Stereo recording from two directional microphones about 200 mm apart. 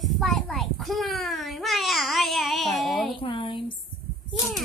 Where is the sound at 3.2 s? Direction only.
25° left (ahead or behind).